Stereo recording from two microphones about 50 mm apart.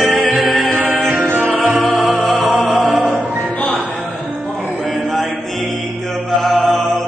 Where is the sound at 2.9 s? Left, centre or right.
Centre.